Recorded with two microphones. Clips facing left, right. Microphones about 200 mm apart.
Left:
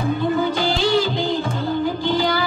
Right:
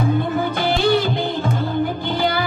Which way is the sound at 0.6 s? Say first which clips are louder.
Right 1 dB; 55° right (ahead or behind).